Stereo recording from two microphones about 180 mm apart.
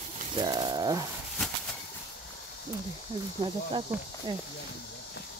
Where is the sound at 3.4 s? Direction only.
30° right (ahead or behind).